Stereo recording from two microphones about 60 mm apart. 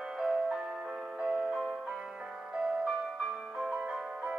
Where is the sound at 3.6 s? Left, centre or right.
Centre.